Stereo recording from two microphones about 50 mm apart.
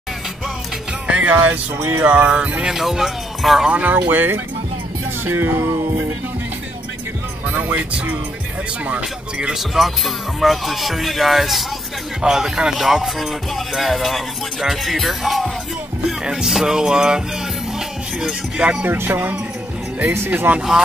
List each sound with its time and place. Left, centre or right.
1.0 s music: right
1.8 s music: right
2.0 s speech: right
2.7 s speech: centre
3.7 s speech: right
5.2 s music: right
7.4 s speech: right
8.8 s speech: right
9.5 s speech: centre
16.3 s speech: centre
18.6 s speech: right
18.9 s speech: right